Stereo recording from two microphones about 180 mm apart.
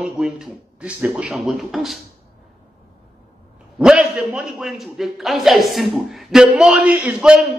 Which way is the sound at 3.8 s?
5° right (ahead or behind).